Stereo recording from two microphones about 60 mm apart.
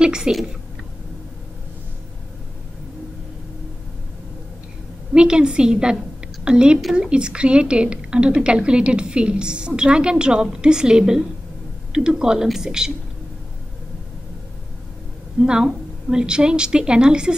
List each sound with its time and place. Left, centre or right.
0.0 s a sound: centre
5.1 s a woman's voice: centre
6.8 s speech: centre
7.1 s a woman's voice: centre
15.4 s a woman's voice: centre